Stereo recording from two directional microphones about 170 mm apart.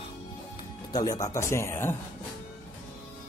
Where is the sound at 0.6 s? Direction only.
25° left (ahead or behind).